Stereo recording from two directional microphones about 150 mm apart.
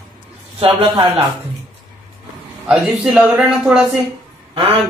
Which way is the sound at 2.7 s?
5° right (ahead or behind).